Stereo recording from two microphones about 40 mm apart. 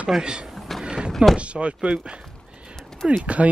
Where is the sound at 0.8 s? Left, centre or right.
Right.